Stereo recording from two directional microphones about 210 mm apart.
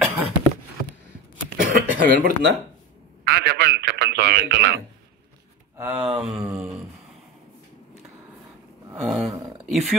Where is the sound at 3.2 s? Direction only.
50° right (ahead or behind).